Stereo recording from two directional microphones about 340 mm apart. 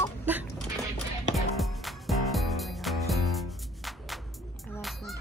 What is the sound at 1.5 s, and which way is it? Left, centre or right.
Music, centre.